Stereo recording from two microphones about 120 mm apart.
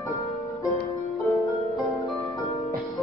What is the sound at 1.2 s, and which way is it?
Harp, centre (ahead or behind).